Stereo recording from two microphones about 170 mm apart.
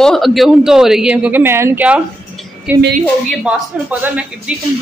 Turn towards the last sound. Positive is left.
turn(degrees=-10)  # may be behind; listen again after turning